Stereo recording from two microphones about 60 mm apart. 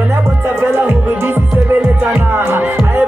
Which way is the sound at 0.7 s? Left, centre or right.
Right.